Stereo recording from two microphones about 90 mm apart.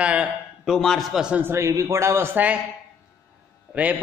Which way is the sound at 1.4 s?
30° right (ahead or behind).